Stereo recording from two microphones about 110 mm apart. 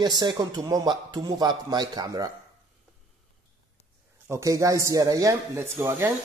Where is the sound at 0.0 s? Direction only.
40° right (ahead or behind).